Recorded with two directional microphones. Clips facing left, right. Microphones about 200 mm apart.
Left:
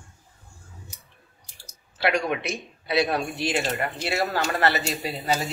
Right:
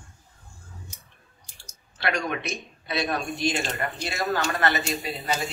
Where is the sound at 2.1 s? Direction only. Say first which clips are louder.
Left 3 dB; 30° left (ahead or behind).